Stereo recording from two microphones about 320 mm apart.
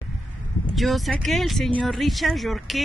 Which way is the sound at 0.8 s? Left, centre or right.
Centre.